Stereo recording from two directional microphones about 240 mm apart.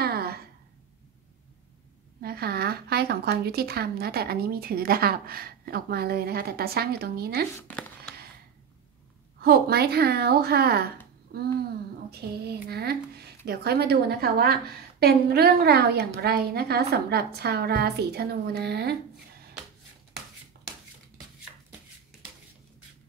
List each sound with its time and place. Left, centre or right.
0.0 s a sound: right
2.2 s speech: right
7.5 s speech: centre
9.4 s speech: right
11.3 s a sound: right
12.1 s speech: right